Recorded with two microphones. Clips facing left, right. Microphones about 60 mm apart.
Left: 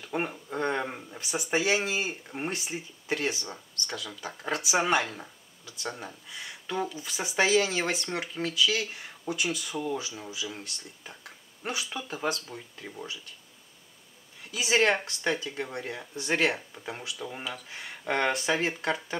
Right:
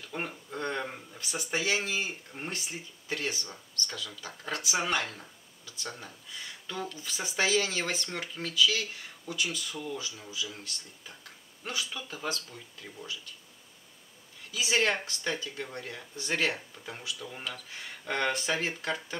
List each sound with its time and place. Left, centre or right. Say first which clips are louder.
0.0 s a sound: left 5 dB; left
0.5 s speech: left 4 dB; left
14.5 s speech: left 3 dB; centre